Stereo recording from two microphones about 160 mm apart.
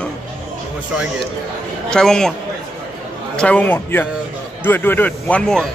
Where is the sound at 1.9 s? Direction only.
5° left (ahead or behind).